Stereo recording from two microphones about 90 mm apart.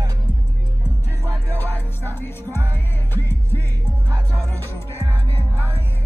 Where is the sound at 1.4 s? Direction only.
20° left (ahead or behind).